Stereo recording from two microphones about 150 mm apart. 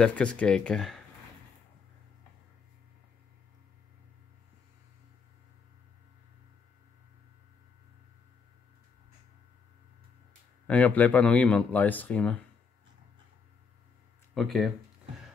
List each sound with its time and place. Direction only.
0.0 s speech: 5° left (ahead or behind)
10.7 s speech: 10° left (ahead or behind)
14.3 s speech: centre (ahead or behind)